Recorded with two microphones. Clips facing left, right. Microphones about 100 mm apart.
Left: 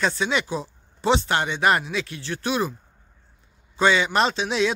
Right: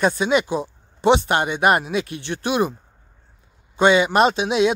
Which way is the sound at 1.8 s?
45° right (ahead or behind).